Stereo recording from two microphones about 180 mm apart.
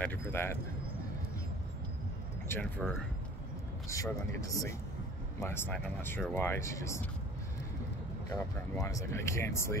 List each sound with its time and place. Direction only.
0.0 s speech: 10° left (ahead or behind)
2.4 s speech: 10° left (ahead or behind)
3.9 s speech: 15° left (ahead or behind)
8.7 s speech: 15° left (ahead or behind)